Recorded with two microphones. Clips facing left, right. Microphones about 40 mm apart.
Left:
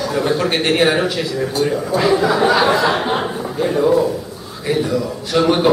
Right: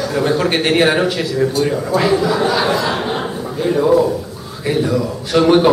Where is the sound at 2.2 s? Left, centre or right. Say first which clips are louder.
Left 2 dB; centre.